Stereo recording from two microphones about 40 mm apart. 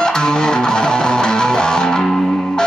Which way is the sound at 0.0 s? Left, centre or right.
Centre.